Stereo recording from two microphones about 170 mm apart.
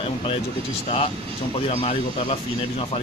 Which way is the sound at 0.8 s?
35° left (ahead or behind).